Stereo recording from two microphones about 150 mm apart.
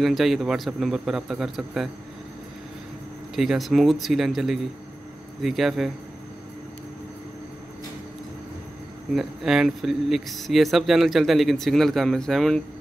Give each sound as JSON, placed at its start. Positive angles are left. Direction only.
{"t": 0.0, "sound": "speech", "side_deg": 0}
{"t": 3.3, "sound": "speech", "side_deg": 0}
{"t": 9.1, "sound": "speech", "side_deg": 0}